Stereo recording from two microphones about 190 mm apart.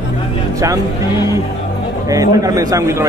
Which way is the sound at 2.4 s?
20° right (ahead or behind).